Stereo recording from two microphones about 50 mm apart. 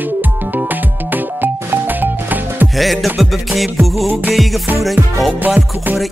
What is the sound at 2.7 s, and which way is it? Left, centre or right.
Music, centre.